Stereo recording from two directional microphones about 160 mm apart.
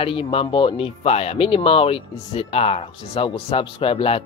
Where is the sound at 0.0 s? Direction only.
35° left (ahead or behind).